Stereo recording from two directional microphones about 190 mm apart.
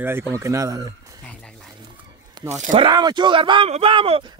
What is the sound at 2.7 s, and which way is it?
Speech, 25° right (ahead or behind).